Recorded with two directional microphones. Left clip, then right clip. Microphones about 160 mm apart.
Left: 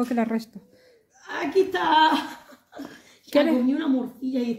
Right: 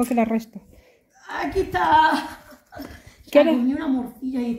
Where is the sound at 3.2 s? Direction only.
5° right (ahead or behind).